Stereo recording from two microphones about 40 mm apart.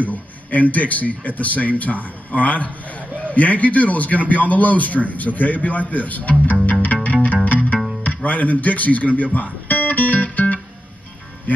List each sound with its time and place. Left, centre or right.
0.0 s a man's voice: left
6.6 s music: left